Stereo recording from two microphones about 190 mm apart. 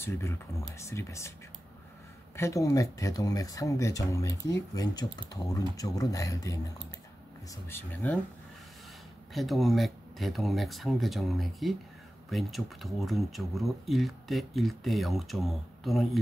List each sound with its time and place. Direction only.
0.0 s speech: 15° left (ahead or behind)
2.3 s speech: 15° left (ahead or behind)
7.6 s speech: 10° left (ahead or behind)
9.3 s speech: centre (ahead or behind)